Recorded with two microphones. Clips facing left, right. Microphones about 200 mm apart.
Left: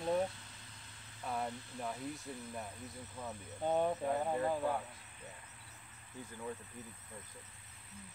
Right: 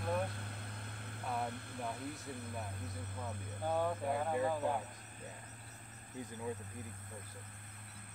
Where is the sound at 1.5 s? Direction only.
55° right (ahead or behind).